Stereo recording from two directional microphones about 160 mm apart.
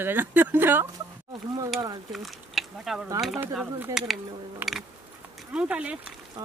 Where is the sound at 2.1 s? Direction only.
Centre (ahead or behind).